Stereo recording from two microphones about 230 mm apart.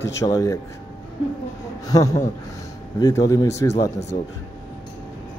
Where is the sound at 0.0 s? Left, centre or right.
Centre.